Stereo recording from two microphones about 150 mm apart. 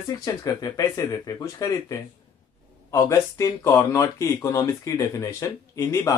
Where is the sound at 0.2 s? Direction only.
25° left (ahead or behind).